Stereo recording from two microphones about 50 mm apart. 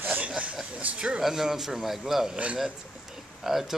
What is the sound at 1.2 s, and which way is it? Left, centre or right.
Speech, centre.